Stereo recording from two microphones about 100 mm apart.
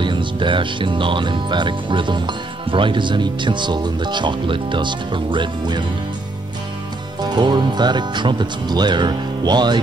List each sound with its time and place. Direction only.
0.0 s speech: 55° right (ahead or behind)
7.2 s speech: 45° right (ahead or behind)